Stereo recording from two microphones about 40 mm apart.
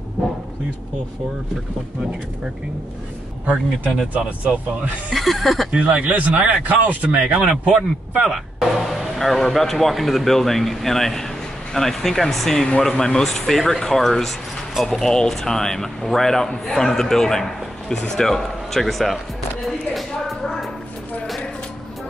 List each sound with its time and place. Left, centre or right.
3.5 s speech: centre
5.1 s speech: centre
5.7 s speech: right
7.4 s a man's voice: right
8.7 s speech: centre
19.9 s a sound: centre